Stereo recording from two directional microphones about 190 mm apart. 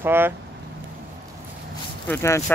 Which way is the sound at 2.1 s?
15° left (ahead or behind).